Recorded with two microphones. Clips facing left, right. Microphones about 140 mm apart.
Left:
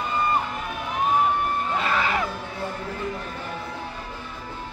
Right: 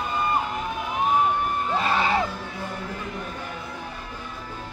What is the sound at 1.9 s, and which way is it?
Music, 30° right (ahead or behind).